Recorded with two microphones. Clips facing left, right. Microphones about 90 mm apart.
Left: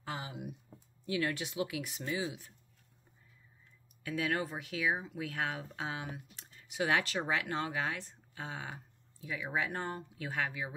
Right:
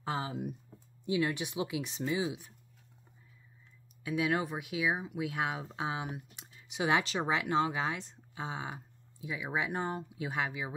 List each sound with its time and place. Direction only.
0.0 s speech: 35° right (ahead or behind)
1.0 s speech: 20° right (ahead or behind)
4.0 s speech: 15° right (ahead or behind)